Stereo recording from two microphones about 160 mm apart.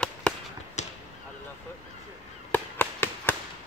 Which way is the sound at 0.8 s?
45° left (ahead or behind).